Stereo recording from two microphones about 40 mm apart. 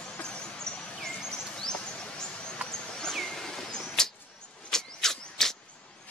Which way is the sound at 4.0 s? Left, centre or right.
Centre.